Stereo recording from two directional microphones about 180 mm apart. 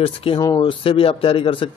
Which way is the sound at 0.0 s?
30° left (ahead or behind).